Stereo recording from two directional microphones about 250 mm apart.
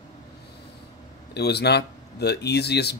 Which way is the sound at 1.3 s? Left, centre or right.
Left.